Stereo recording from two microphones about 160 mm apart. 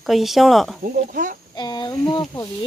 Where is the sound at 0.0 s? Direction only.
Centre (ahead or behind).